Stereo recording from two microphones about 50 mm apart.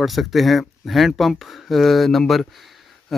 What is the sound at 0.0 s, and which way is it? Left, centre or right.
Speech, centre.